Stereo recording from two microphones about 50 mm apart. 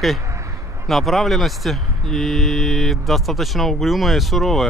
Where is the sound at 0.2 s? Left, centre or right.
Right.